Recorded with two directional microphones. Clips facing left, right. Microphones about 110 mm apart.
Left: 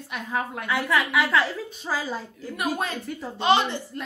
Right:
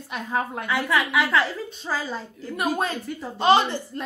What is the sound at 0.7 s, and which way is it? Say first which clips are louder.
A woman's voice: even; centre (ahead or behind).